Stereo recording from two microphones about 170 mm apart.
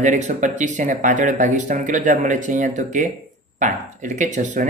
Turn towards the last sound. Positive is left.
turn(degrees=-45)  # may be behind; listen again after turning